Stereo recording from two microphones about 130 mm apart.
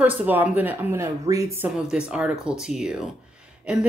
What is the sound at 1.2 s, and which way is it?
Speech, 25° right (ahead or behind).